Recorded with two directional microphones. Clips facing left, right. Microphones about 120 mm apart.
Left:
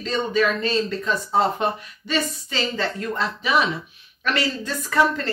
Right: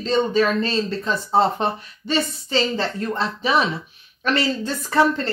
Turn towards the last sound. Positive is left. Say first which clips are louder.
# right 2 dB
turn(degrees=-30)  # may be behind; listen again after turning